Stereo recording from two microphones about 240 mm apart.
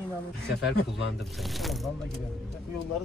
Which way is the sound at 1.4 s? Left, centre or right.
Centre.